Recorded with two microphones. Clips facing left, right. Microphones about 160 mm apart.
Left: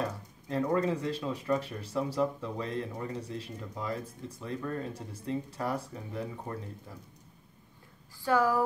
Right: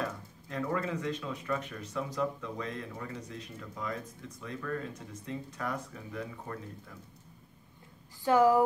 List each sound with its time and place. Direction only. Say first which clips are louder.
0.0 s speech: left 2 dB; 30° left (ahead or behind)
8.2 s speech: right 3 dB; 20° right (ahead or behind)